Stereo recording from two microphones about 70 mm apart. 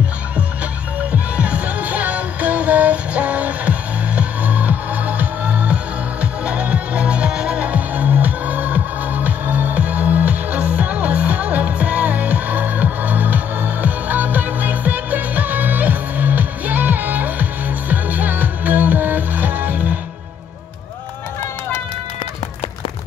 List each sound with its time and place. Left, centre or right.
1.1 s music: centre